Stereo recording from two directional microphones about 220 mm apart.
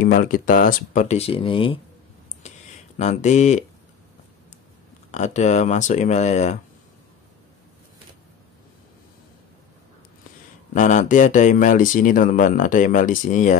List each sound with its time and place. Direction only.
0.0 s speech: 40° left (ahead or behind); by 1.8 s 25° left (ahead or behind)
3.0 s speech: 30° left (ahead or behind)
5.1 s speech: 30° left (ahead or behind)
10.7 s speech: 35° left (ahead or behind)